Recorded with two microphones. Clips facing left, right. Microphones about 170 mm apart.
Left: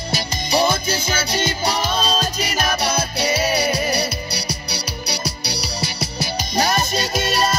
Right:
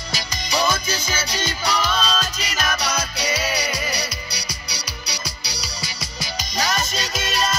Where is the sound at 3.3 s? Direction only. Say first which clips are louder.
Left 7 dB; 55° left (ahead or behind).